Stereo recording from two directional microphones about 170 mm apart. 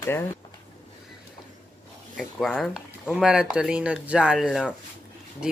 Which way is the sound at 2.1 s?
Centre (ahead or behind).